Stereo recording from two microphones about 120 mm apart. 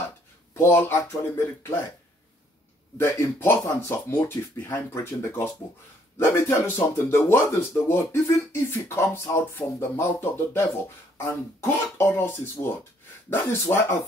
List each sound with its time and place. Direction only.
0.6 s speech: 20° left (ahead or behind)
3.0 s speech: 20° left (ahead or behind)
12.0 s speech: 20° left (ahead or behind)